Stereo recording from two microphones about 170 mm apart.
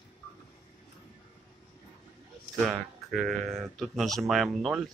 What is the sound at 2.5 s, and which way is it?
Speech, centre (ahead or behind).